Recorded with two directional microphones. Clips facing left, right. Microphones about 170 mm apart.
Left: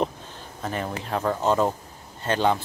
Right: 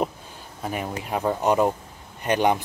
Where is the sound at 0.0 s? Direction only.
10° right (ahead or behind).